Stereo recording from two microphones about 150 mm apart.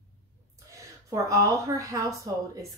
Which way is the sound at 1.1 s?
20° right (ahead or behind).